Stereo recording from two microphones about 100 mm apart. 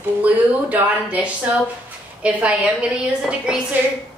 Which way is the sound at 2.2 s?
10° right (ahead or behind).